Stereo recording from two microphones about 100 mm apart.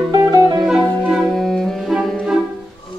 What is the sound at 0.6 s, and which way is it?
Music, 5° right (ahead or behind).